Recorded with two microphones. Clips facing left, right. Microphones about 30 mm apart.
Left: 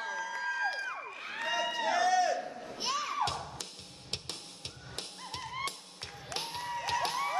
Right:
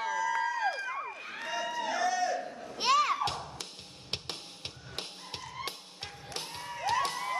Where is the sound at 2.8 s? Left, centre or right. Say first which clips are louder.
Right 9 dB; right.